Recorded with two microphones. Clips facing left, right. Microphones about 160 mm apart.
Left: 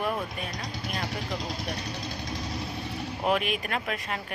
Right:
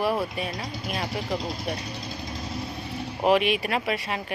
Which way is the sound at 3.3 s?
5° right (ahead or behind).